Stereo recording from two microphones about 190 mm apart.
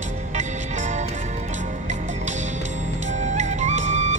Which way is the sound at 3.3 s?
40° right (ahead or behind).